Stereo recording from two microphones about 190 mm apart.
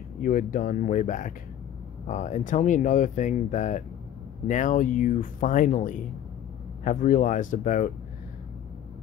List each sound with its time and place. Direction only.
0.2 s speech: 45° left (ahead or behind)